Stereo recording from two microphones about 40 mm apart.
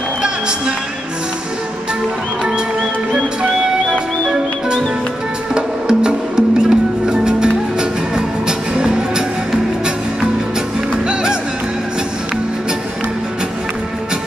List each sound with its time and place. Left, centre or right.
5.5 s music: right